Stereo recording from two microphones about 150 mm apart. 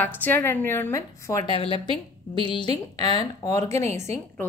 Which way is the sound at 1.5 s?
35° left (ahead or behind).